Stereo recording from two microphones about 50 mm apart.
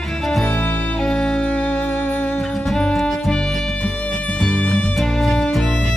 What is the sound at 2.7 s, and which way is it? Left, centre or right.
Music, centre.